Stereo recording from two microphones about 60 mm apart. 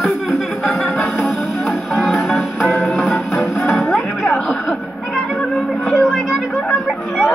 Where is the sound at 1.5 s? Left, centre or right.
Centre.